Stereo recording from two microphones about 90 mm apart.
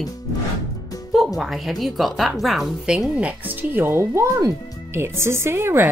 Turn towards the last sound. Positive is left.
turn(degrees=-25)  # may be behind; listen again after turning